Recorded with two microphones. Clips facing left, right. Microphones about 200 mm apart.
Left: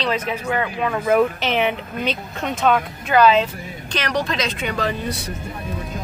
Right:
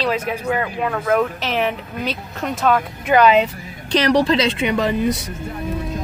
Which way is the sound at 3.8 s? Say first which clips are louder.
Right 8 dB; 35° right (ahead or behind).